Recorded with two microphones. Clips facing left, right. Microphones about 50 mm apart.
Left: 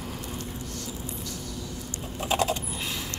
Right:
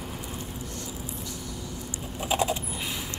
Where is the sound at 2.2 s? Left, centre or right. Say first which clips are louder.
Left 1 dB; centre.